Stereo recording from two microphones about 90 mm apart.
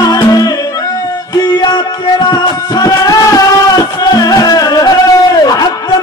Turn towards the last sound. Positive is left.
turn(degrees=45)  # may be behind; listen again after turning